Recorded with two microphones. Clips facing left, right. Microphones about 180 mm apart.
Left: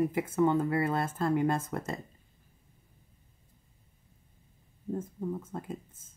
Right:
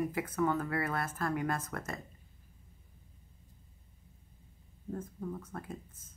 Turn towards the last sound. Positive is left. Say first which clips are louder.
# left 4 dB
turn(degrees=25)  # may be behind; listen again after turning